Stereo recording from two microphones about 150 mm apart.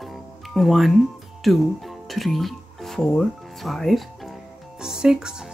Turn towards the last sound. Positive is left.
turn(degrees=-5)  # may be behind; listen again after turning